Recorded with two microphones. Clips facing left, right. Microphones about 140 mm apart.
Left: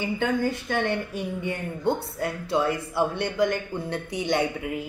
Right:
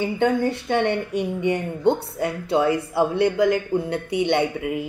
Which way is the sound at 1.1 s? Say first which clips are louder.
Right 7 dB; 75° right (ahead or behind).